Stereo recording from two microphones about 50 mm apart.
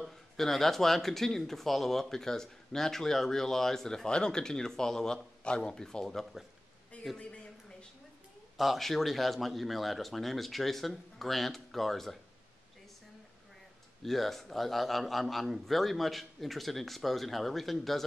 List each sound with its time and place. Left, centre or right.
0.4 s speech: centre
7.2 s speech: left
8.5 s speech: centre
14.0 s speech: centre